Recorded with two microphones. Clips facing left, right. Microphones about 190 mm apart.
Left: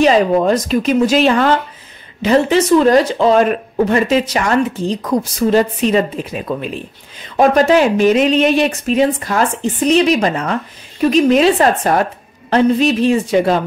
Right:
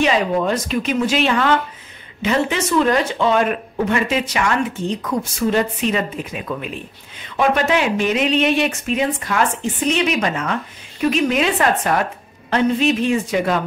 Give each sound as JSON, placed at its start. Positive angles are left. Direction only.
{"t": 0.0, "sound": "speech", "side_deg": 40}